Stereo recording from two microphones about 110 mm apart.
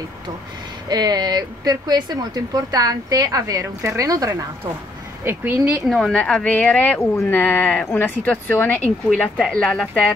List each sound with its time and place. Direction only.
0.8 s speech: 40° right (ahead or behind)
5.2 s speech: 20° right (ahead or behind)
5.9 s speech: centre (ahead or behind)
9.5 s speech: 5° left (ahead or behind)